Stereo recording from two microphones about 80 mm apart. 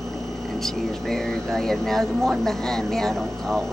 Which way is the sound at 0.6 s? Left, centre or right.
Centre.